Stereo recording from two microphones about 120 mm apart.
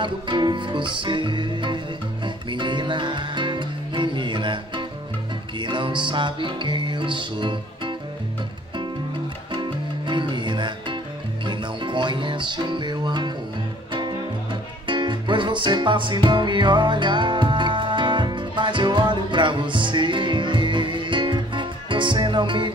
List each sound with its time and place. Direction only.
0.0 s music: 40° right (ahead or behind)
9.5 s music: 40° right (ahead or behind)
14.9 s music: 40° right (ahead or behind)